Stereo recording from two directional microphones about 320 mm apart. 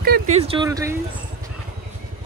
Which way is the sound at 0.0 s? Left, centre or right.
Right.